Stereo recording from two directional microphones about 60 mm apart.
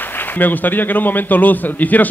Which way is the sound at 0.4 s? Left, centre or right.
Left.